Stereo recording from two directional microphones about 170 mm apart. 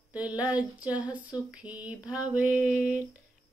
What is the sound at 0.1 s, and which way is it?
Female singing, 10° right (ahead or behind).